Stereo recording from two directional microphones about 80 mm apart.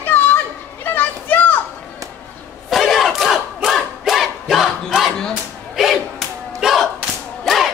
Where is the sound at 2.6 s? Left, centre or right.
Centre.